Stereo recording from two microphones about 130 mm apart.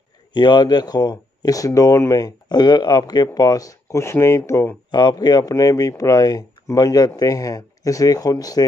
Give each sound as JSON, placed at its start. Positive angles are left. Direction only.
{"t": 0.3, "sound": "speech", "side_deg": 35}
{"t": 4.9, "sound": "speech", "side_deg": 35}